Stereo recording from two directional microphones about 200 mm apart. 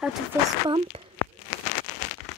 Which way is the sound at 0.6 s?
25° right (ahead or behind).